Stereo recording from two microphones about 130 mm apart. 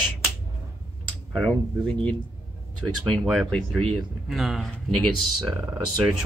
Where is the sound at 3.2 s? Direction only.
Centre (ahead or behind).